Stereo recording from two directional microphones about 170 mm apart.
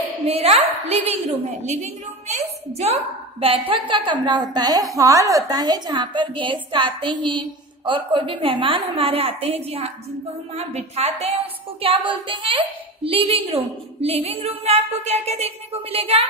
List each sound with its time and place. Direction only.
0.3 s a woman's voice: 40° right (ahead or behind)
10.5 s music: 40° right (ahead or behind)